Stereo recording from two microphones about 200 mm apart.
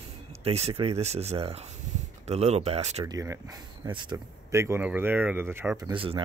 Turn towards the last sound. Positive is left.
turn(degrees=-25)  # may be behind; listen again after turning